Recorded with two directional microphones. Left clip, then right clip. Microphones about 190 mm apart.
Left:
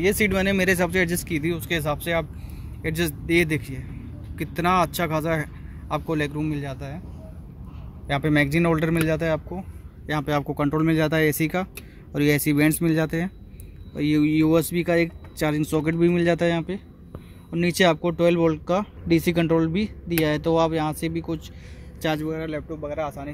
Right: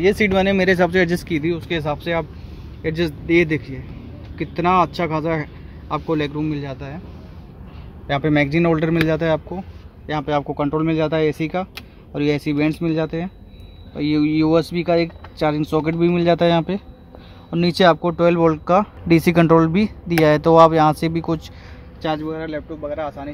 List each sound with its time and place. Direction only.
0.0 s speech: centre (ahead or behind)
8.1 s speech: 5° right (ahead or behind)
10.0 s speech: 10° left (ahead or behind)
13.9 s speech: centre (ahead or behind); by 21.5 s 25° right (ahead or behind)
22.0 s speech: 15° left (ahead or behind)